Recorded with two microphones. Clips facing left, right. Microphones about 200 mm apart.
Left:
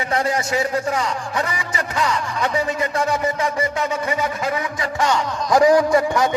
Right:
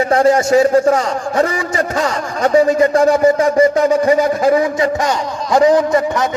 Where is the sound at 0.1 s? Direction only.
45° right (ahead or behind); by 5.9 s 25° right (ahead or behind).